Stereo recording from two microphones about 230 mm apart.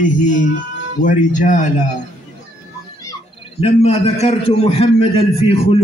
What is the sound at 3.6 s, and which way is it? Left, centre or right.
A man's voice, left.